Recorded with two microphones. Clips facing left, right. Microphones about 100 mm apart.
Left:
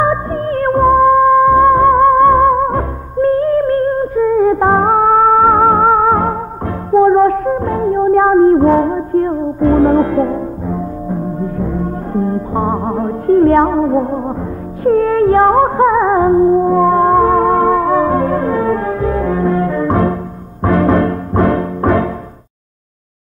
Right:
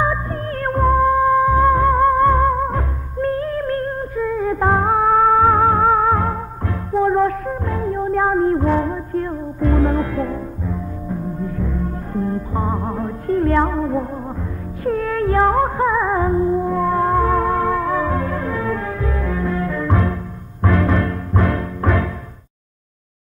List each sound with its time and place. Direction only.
0.0 s music: 35° left (ahead or behind)